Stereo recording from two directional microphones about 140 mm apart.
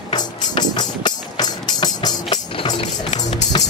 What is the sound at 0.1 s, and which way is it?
Music, 30° left (ahead or behind).